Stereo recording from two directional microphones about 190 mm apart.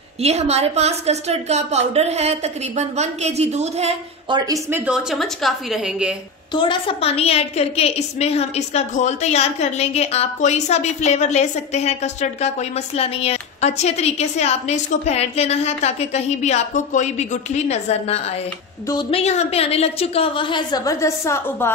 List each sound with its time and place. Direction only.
0.2 s a woman's voice: 35° right (ahead or behind)
4.5 s a woman's voice: 10° right (ahead or behind)
6.5 s a woman's voice: 25° left (ahead or behind)